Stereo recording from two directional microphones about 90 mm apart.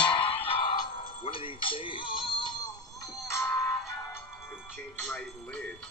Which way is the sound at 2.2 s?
60° left (ahead or behind).